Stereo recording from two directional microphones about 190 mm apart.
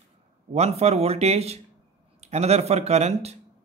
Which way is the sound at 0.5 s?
35° right (ahead or behind).